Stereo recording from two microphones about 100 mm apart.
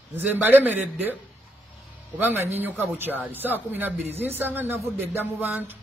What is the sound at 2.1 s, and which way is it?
A man's voice, 20° right (ahead or behind).